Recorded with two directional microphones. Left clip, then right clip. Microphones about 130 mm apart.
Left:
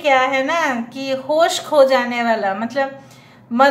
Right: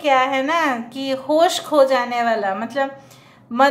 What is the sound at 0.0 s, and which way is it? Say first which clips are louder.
A woman's voice: left 2 dB; 20° right (ahead or behind).